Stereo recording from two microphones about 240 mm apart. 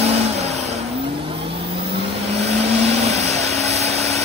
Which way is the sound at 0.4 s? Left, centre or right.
Right.